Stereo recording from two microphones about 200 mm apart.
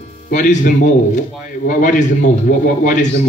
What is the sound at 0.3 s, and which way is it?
A man's voice, 40° left (ahead or behind).